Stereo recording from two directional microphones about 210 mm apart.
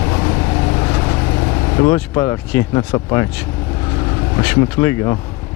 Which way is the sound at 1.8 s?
15° left (ahead or behind).